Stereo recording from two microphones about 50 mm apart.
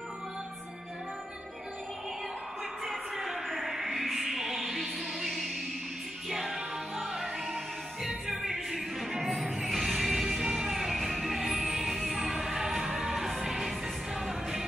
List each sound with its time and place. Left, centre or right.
2.8 s music: centre
5.2 s a sound: centre
6.2 s music: centre